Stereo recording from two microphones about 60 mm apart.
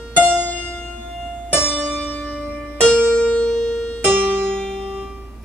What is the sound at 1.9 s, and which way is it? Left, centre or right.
Music, left.